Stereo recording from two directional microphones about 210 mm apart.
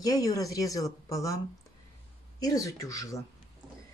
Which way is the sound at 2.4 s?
15° left (ahead or behind).